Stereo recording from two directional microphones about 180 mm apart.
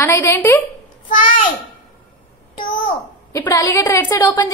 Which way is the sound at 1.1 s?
45° left (ahead or behind).